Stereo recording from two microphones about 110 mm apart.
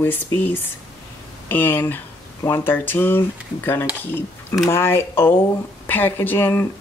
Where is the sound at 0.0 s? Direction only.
20° left (ahead or behind).